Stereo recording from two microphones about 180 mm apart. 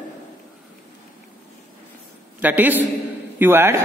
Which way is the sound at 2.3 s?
10° right (ahead or behind).